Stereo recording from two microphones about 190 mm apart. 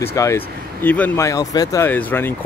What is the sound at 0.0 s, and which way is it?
Speech, 15° left (ahead or behind).